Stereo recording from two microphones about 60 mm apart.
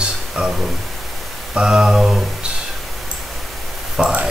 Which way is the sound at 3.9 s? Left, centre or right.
Centre.